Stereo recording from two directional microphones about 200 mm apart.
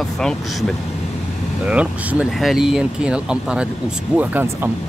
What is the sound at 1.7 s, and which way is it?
Speech, 5° right (ahead or behind).